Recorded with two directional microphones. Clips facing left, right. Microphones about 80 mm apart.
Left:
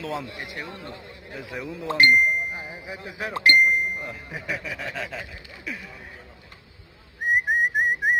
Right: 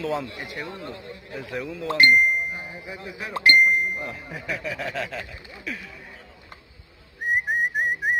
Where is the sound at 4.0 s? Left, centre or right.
Centre.